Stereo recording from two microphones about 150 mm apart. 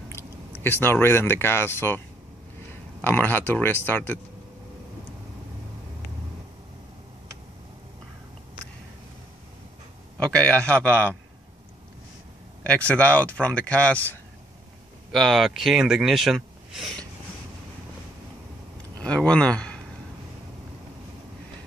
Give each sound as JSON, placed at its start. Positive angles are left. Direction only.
{"t": 0.7, "sound": "speech", "side_deg": 15}
{"t": 10.1, "sound": "speech", "side_deg": 10}
{"t": 12.6, "sound": "speech", "side_deg": 10}
{"t": 15.1, "sound": "speech", "side_deg": 0}
{"t": 18.9, "sound": "a man's voice", "side_deg": 10}